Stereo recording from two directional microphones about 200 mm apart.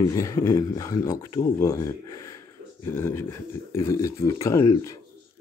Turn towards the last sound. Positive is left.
turn(degrees=20)  # may be behind; listen again after turning